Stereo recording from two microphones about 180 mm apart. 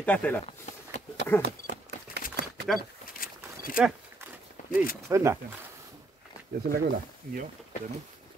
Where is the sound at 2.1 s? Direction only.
65° right (ahead or behind).